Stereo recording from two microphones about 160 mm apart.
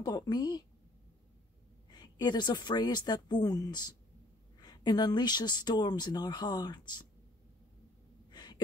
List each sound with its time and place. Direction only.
0.0 s speech: 25° left (ahead or behind)
1.9 s speech: 25° left (ahead or behind)
8.3 s a sound: 25° left (ahead or behind)